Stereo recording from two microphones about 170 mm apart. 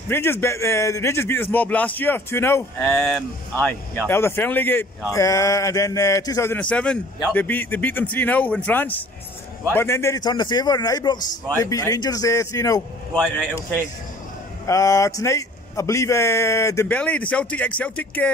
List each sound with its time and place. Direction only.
0.1 s a man's voice: 15° left (ahead or behind)
14.7 s speech: 20° left (ahead or behind)